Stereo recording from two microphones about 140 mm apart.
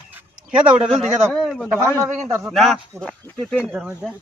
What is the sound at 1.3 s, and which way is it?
Speech, centre (ahead or behind).